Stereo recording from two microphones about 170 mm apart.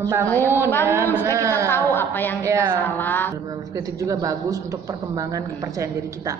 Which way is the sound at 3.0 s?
10° left (ahead or behind).